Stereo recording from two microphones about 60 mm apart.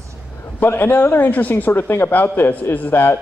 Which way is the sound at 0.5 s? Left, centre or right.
Left.